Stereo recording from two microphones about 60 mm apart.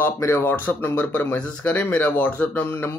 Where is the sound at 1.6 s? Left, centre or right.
Left.